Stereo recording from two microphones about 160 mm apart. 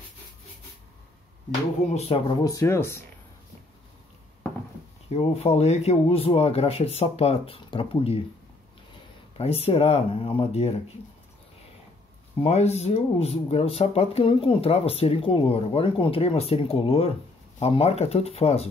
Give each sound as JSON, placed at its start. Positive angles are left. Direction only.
{"t": 1.9, "sound": "speech", "side_deg": 40}
{"t": 5.1, "sound": "speech", "side_deg": 40}
{"t": 9.4, "sound": "speech", "side_deg": 40}
{"t": 12.4, "sound": "speech", "side_deg": 40}